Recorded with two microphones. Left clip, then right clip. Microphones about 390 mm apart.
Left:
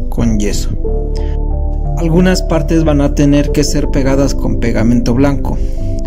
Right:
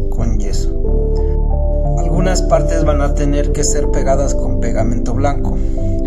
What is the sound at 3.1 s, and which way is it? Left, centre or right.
Speech, centre.